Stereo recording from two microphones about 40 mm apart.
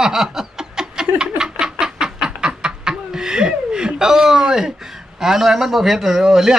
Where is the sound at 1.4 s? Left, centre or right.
Centre.